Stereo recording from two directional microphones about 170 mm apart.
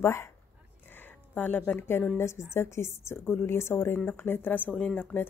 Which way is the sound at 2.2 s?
15° left (ahead or behind).